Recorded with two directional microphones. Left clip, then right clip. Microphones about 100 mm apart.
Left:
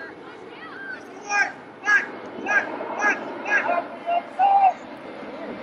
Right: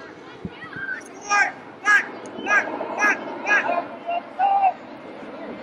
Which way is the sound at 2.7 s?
30° left (ahead or behind).